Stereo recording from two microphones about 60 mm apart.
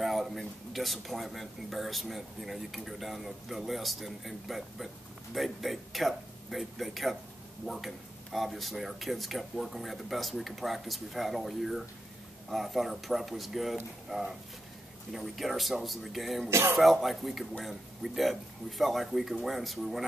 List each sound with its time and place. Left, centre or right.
0.0 s speech: centre
16.4 s speech: right
16.7 s speech: centre